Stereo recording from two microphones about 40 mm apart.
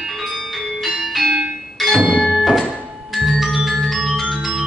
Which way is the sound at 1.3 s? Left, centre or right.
Right.